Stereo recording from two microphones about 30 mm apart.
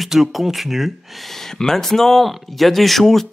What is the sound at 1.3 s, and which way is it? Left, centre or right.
Speech, centre.